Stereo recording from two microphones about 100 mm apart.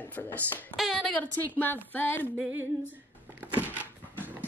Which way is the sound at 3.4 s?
15° right (ahead or behind).